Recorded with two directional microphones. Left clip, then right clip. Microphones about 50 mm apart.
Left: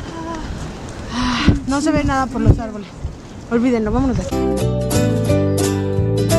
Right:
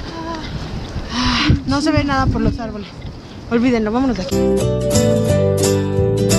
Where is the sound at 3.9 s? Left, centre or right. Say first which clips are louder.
Right 1 dB; right.